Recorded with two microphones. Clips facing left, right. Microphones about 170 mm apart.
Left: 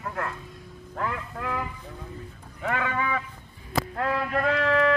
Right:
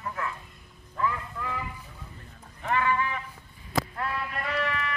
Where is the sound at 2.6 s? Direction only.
90° left.